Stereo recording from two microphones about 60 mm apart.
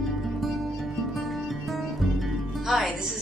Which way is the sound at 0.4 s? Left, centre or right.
Centre.